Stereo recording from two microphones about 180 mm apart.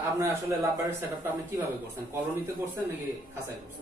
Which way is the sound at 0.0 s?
15° right (ahead or behind).